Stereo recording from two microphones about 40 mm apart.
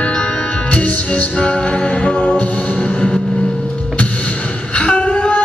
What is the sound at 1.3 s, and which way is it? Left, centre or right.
Music, left.